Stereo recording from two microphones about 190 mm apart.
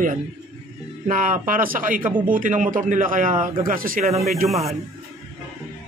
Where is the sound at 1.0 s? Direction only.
45° right (ahead or behind).